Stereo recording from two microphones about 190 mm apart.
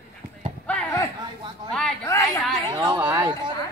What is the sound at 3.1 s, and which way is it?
Speech, 25° right (ahead or behind).